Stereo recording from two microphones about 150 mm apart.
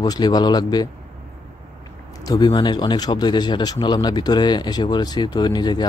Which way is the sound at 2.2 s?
25° left (ahead or behind).